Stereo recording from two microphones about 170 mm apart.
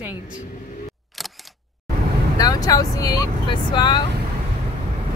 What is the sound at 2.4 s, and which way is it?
Speech, 20° left (ahead or behind).